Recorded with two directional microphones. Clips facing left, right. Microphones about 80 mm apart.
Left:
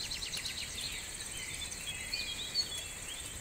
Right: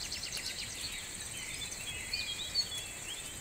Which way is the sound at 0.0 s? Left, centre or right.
Centre.